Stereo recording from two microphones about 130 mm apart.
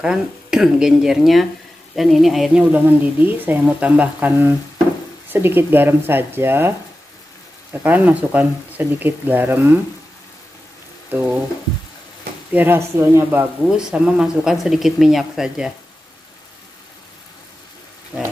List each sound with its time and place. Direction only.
0.0 s speech: 5° right (ahead or behind)
7.7 s speech: 15° right (ahead or behind)
11.1 s frying: 15° right (ahead or behind)
12.5 s speech: 20° right (ahead or behind)